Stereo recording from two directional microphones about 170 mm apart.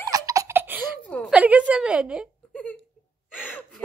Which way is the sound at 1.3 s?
10° right (ahead or behind).